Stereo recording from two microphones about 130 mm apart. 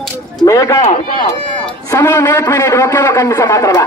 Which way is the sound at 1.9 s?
20° left (ahead or behind).